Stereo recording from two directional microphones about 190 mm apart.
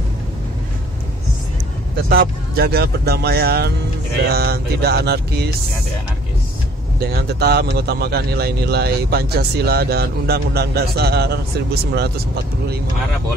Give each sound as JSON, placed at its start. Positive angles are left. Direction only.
{"t": 2.0, "sound": "speech", "side_deg": -55}
{"t": 7.0, "sound": "speech", "side_deg": -55}